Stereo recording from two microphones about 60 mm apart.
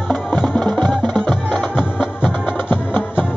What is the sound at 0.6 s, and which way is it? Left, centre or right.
Music, centre.